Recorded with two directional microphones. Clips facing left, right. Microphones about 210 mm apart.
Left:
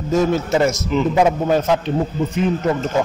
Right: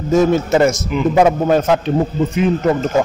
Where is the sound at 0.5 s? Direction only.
45° right (ahead or behind).